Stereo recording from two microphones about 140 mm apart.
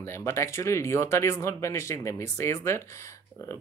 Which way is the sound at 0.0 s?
20° left (ahead or behind).